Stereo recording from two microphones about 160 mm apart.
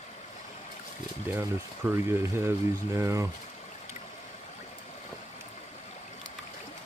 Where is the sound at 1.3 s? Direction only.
15° right (ahead or behind).